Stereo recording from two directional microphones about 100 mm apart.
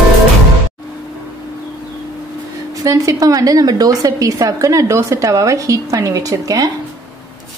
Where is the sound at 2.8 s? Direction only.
35° right (ahead or behind).